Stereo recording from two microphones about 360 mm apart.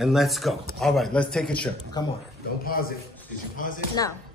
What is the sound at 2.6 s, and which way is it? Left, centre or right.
A man's voice, left.